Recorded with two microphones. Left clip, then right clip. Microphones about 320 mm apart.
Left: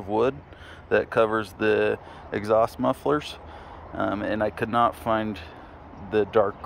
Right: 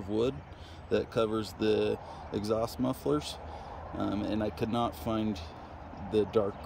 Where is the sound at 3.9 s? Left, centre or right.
Centre.